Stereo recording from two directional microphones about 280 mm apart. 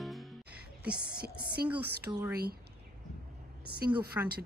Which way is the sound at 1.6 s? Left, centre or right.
Centre.